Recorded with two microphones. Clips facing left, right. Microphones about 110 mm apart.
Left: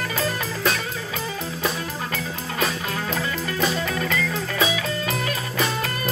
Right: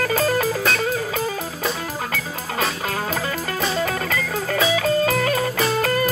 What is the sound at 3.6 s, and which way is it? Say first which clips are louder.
Music: right 1 dB; 40° right (ahead or behind).